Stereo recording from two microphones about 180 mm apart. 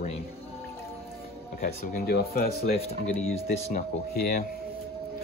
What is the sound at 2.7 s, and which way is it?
Speech, 35° left (ahead or behind).